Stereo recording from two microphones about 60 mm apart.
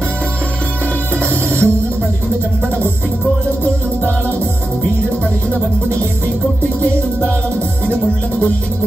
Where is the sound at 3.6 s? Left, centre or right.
Left.